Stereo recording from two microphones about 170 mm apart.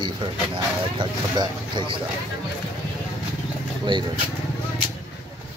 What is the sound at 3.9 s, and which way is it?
Speech, 30° right (ahead or behind).